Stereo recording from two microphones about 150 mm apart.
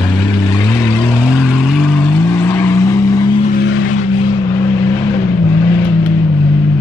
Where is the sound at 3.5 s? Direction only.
60° left (ahead or behind).